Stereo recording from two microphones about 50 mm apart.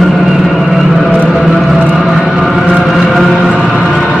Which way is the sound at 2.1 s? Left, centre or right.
Centre.